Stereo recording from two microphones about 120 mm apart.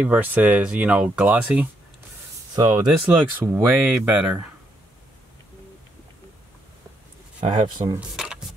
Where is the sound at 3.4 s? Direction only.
15° right (ahead or behind).